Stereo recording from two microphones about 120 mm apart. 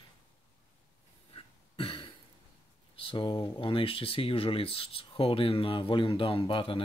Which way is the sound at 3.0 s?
45° left (ahead or behind).